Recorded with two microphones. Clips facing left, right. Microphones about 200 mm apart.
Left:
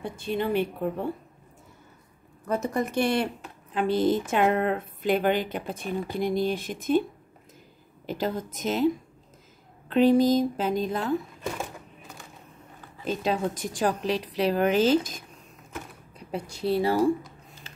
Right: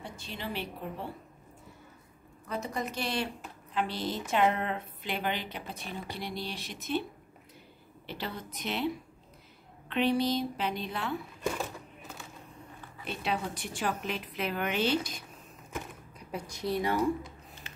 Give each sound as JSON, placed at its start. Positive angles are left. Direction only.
{"t": 0.0, "sound": "a woman's voice", "side_deg": 55}
{"t": 2.4, "sound": "a woman's voice", "side_deg": 50}
{"t": 8.1, "sound": "a woman's voice", "side_deg": 45}
{"t": 13.0, "sound": "speech", "side_deg": 40}
{"t": 16.2, "sound": "speech", "side_deg": 30}